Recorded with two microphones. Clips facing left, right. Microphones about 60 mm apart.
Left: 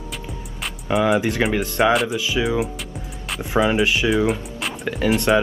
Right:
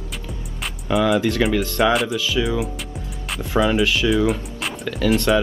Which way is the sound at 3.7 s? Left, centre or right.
Left.